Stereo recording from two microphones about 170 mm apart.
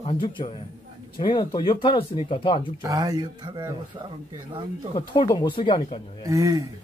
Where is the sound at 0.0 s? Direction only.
30° left (ahead or behind).